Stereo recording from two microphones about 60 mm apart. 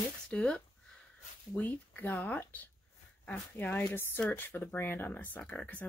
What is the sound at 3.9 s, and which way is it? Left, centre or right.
Speech, left.